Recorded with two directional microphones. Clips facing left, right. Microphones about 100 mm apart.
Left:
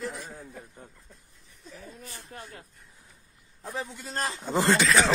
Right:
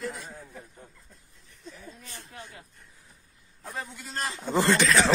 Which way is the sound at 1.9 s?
45° left (ahead or behind).